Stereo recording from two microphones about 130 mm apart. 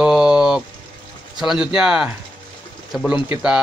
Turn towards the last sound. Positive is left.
turn(degrees=-5)  # may be behind; listen again after turning